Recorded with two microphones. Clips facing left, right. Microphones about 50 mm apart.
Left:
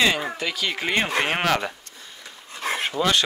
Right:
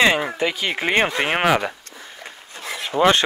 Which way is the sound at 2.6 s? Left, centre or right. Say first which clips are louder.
Left 4 dB; left.